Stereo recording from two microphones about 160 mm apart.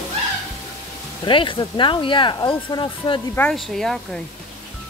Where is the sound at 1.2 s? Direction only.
30° left (ahead or behind).